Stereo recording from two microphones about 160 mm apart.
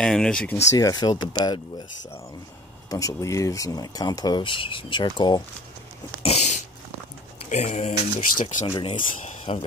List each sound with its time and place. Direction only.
0.0 s speech: 5° left (ahead or behind)
0.7 s speech: 25° left (ahead or behind)
2.9 s speech: 20° left (ahead or behind)
6.2 s dog: 45° left (ahead or behind)
7.4 s speech: 45° left (ahead or behind)
8.6 s speech: 35° left (ahead or behind)